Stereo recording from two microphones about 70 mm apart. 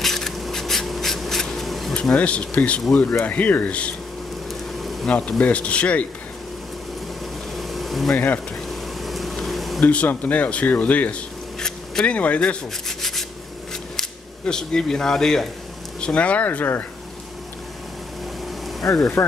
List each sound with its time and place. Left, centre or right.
0.0 s a sound: centre
2.1 s speech: centre
4.7 s bee: centre
5.4 s speech: centre
7.5 s a sound: centre
8.1 s speech: left
8.6 s a sound: centre
9.8 s speech: centre
11.6 s a sound: centre
12.2 s speech: centre
12.8 s rub: centre
13.9 s speech: centre
19.2 s speech: left